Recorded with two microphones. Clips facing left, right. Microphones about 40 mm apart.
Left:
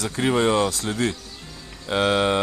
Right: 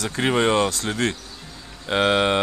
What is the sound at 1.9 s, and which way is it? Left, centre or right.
Speech, right.